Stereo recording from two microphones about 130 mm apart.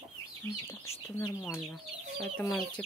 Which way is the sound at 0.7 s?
20° left (ahead or behind).